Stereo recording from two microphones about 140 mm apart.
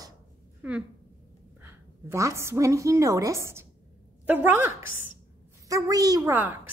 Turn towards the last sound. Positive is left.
turn(degrees=-15)  # may be behind; listen again after turning